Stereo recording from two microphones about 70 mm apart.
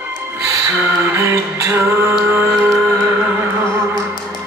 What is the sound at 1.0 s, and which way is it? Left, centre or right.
Music, right.